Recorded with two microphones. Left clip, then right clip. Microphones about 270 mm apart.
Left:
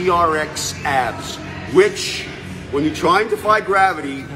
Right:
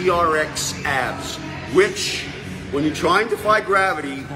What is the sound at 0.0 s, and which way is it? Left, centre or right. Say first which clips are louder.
Speech: left 2 dB; centre.